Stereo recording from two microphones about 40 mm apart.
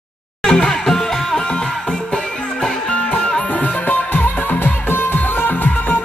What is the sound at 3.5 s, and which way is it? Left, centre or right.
Music, left.